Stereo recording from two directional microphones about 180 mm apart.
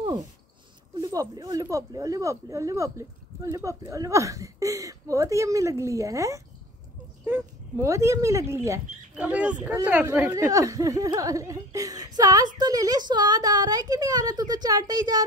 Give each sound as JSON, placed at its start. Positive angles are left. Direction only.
{"t": 1.0, "sound": "speech", "side_deg": -20}
{"t": 10.1, "sound": "a woman's voice", "side_deg": -15}